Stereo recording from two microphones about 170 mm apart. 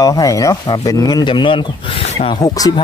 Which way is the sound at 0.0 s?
20° left (ahead or behind).